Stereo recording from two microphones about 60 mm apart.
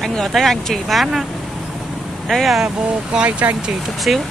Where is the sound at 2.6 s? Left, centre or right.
Centre.